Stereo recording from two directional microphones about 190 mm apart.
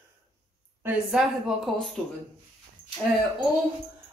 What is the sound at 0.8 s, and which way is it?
Speech, 5° right (ahead or behind).